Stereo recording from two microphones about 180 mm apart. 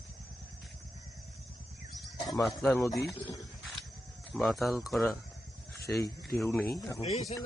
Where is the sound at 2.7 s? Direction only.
15° left (ahead or behind).